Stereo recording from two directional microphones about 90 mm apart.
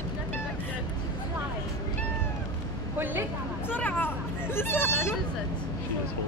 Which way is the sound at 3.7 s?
20° left (ahead or behind).